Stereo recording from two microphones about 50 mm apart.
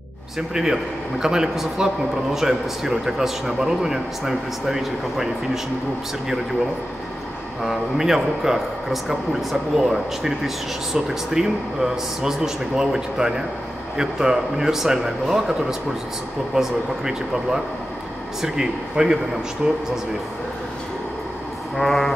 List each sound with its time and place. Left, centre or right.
1.2 s a man's voice: centre
7.6 s a man's voice: centre
16.5 s a man's voice: centre
21.7 s music: centre